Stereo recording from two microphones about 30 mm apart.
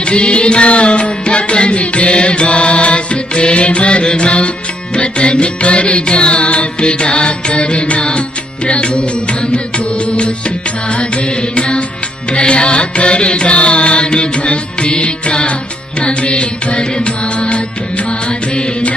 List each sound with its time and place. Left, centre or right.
0.1 s music: left
11.5 s music: left